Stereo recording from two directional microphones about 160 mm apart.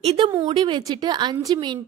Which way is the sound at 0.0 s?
40° right (ahead or behind).